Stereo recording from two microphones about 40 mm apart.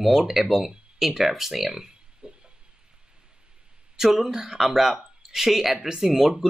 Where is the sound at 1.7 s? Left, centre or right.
Centre.